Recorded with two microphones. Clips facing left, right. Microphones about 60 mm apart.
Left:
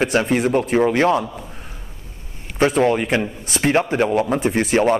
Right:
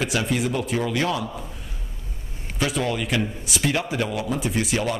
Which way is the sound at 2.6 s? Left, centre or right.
Left.